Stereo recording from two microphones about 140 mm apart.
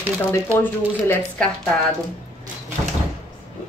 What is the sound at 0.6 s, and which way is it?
Speech, 15° left (ahead or behind).